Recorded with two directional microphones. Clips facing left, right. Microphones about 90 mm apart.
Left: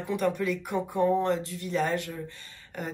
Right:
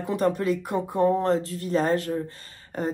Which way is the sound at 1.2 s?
40° right (ahead or behind).